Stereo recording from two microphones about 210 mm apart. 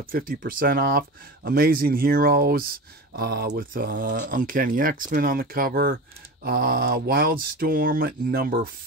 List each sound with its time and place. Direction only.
0.1 s speech: 45° right (ahead or behind)